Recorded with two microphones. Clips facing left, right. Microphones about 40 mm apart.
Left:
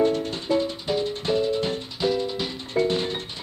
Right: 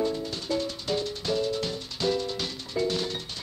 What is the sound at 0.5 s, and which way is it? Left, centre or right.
Music, left.